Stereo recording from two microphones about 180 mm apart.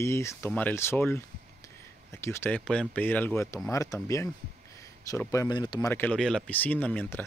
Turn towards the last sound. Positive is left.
turn(degrees=10)  # may be behind; listen again after turning